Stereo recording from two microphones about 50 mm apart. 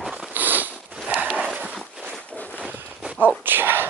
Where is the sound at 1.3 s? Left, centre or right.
Right.